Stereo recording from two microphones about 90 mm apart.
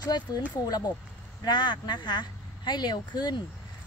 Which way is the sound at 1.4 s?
55° left (ahead or behind).